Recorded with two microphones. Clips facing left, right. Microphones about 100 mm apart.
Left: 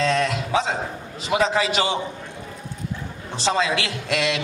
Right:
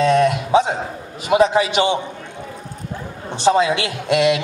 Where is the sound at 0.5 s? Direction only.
25° right (ahead or behind).